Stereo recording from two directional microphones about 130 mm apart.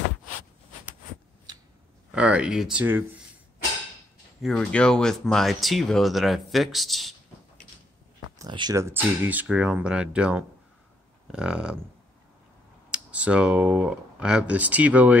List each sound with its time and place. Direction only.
2.1 s speech: 10° right (ahead or behind)
4.4 s speech: 5° left (ahead or behind)
8.4 s speech: 35° right (ahead or behind)
8.7 s speech: 20° right (ahead or behind)
13.1 s speech: 10° right (ahead or behind)